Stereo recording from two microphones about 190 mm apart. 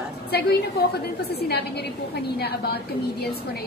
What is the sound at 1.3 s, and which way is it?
A woman's voice, 60° left (ahead or behind).